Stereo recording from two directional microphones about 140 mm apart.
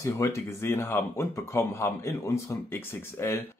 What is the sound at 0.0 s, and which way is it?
Speech, 20° left (ahead or behind).